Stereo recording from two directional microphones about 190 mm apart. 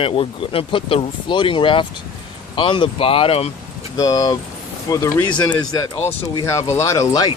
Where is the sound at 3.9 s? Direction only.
20° left (ahead or behind).